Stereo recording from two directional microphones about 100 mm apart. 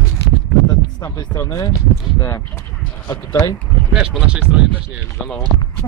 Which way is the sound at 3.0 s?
40° left (ahead or behind).